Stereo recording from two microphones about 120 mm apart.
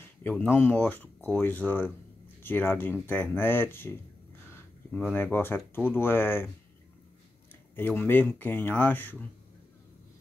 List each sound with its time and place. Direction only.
0.2 s speech: 15° left (ahead or behind)
5.1 s speech: 20° left (ahead or behind)
7.7 s speech: 15° left (ahead or behind)